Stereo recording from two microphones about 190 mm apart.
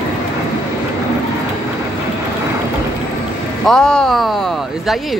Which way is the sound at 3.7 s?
5° left (ahead or behind).